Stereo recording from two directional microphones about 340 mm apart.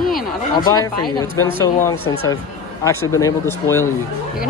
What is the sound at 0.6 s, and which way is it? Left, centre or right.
Speech, centre.